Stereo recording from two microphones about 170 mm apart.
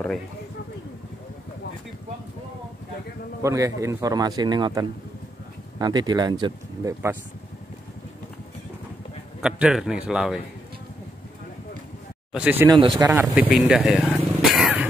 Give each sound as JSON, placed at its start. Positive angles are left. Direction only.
{"t": 3.4, "sound": "a man's voice", "side_deg": -20}
{"t": 9.4, "sound": "a man's voice", "side_deg": -5}
{"t": 12.3, "sound": "speech", "side_deg": -10}
{"t": 12.6, "sound": "a man's voice", "side_deg": -25}
{"t": 13.0, "sound": "speech", "side_deg": -15}
{"t": 13.3, "sound": "vehicle", "side_deg": 0}